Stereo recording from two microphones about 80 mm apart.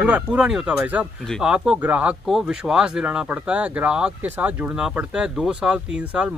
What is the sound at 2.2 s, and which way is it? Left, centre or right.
Speech, centre.